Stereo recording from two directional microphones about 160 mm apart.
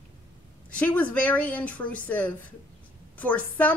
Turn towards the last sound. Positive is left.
turn(degrees=10)  # may be behind; listen again after turning